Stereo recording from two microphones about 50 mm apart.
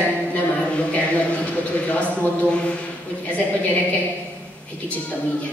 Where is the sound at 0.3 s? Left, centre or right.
Left.